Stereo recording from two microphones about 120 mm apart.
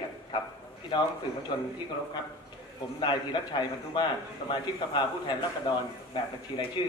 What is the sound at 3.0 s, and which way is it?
A man's voice, 40° left (ahead or behind).